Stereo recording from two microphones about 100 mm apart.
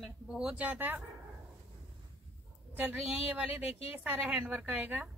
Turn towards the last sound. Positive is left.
turn(degrees=-15)  # may be behind; listen again after turning